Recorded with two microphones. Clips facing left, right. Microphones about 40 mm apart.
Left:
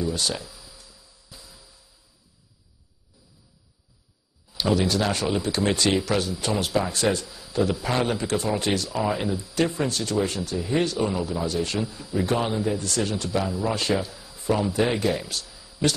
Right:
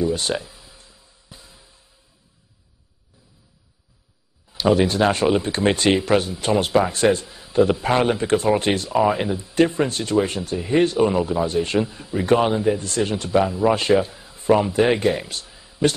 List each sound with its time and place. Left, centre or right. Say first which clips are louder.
0.0 s music: right 5 dB; right
4.6 s a man's voice: right 6 dB; right